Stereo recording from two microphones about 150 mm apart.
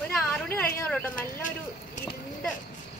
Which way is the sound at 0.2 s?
10° left (ahead or behind).